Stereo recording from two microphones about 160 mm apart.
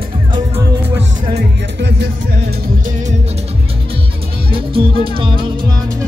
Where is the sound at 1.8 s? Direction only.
90° right.